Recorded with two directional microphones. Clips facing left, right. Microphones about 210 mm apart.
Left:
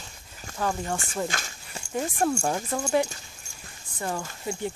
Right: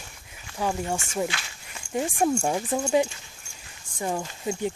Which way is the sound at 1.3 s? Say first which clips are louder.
Left 2 dB; 45° left (ahead or behind).